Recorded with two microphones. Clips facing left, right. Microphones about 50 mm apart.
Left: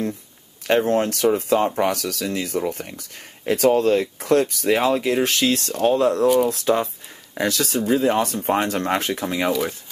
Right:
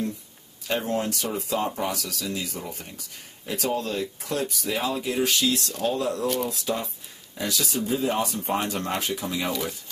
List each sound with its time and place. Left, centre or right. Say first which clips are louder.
0.7 s speech: left 8 dB; left
6.2 s speech: left 9 dB; centre
6.5 s speech: left 9 dB; left